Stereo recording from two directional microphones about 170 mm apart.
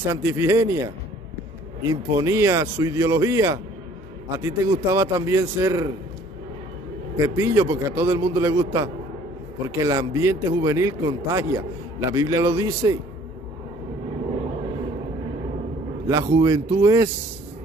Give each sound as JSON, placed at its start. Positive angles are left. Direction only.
{"t": 0.0, "sound": "a man's voice", "side_deg": -15}
{"t": 7.2, "sound": "a man's voice", "side_deg": -15}
{"t": 16.1, "sound": "a man's voice", "side_deg": -20}